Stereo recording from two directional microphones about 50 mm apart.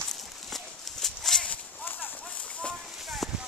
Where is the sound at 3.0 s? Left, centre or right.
Centre.